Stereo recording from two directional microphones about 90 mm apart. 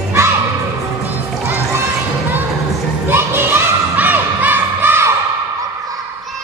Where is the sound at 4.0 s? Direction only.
20° right (ahead or behind).